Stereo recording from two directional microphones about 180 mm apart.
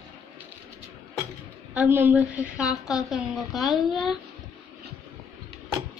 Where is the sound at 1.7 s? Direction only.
10° right (ahead or behind).